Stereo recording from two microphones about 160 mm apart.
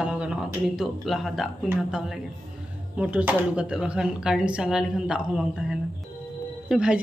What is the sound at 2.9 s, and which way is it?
A man's voice, 10° right (ahead or behind).